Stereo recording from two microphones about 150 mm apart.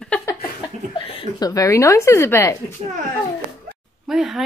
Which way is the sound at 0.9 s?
40° left (ahead or behind).